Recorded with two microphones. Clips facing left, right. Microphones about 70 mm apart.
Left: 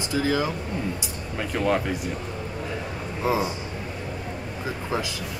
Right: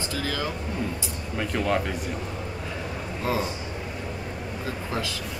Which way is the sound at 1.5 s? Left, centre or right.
Centre.